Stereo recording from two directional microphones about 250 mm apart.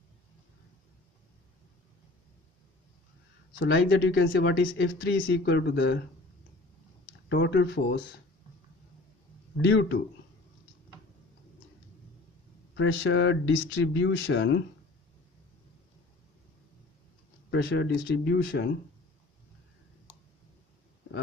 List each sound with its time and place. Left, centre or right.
3.5 s speech: left
7.2 s speech: left
9.7 s speech: left
12.7 s speech: left
17.5 s speech: left